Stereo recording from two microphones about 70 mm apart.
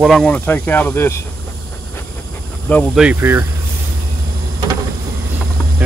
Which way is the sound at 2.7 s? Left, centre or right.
Left.